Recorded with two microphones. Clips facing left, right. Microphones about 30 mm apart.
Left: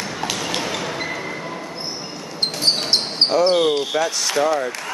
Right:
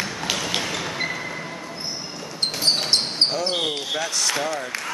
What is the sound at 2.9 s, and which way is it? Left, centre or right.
Basketball bounce, centre.